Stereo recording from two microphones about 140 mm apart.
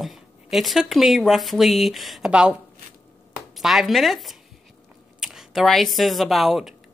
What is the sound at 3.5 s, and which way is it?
Speech, centre (ahead or behind).